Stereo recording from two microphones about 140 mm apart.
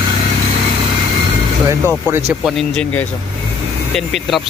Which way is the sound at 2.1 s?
20° right (ahead or behind).